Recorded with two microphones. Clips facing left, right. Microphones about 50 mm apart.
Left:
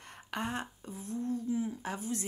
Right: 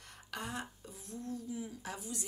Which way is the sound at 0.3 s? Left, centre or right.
Left.